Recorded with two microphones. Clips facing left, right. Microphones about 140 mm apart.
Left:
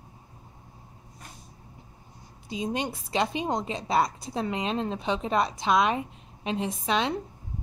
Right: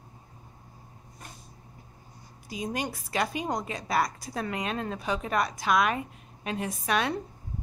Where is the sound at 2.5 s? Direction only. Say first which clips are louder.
Left 2 dB; 25° left (ahead or behind).